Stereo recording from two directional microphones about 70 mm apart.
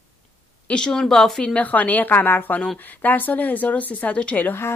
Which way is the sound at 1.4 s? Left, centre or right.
Centre.